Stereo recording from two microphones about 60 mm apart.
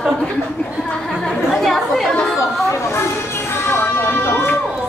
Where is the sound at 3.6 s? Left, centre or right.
Left.